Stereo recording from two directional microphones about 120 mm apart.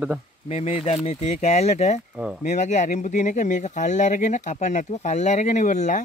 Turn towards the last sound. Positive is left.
turn(degrees=90)